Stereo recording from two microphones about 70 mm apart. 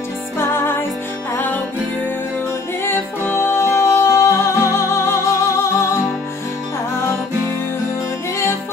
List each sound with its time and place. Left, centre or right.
0.4 s music: left
3.3 s music: left